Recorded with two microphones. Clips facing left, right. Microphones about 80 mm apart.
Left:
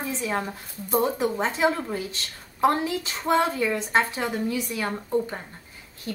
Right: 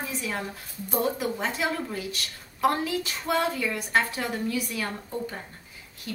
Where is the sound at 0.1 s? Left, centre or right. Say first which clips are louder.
Left 4 dB; left.